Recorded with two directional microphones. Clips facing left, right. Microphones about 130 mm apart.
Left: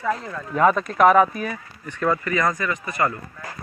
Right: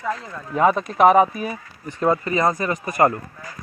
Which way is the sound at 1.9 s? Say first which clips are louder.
Right 2 dB; 30° right (ahead or behind).